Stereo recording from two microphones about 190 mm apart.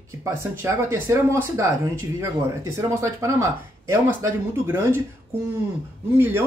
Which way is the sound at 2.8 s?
15° right (ahead or behind).